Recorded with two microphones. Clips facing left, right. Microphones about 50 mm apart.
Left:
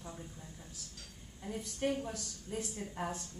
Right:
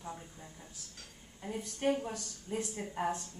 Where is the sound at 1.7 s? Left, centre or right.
Right.